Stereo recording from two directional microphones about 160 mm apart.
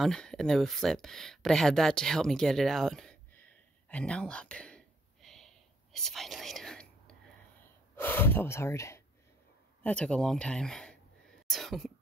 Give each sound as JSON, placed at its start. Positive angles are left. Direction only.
{"t": 0.0, "sound": "speech", "side_deg": 5}
{"t": 5.9, "sound": "whispering", "side_deg": 0}
{"t": 7.9, "sound": "speech", "side_deg": 15}
{"t": 9.8, "sound": "speech", "side_deg": 5}